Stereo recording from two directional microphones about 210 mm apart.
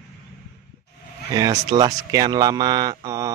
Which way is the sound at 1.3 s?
20° right (ahead or behind).